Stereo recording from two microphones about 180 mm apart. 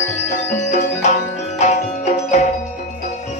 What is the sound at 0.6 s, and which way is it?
Music, 40° left (ahead or behind).